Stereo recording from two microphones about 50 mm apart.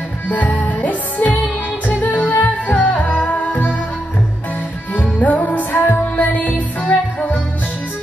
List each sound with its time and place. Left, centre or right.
0.3 s music: left
4.9 s music: left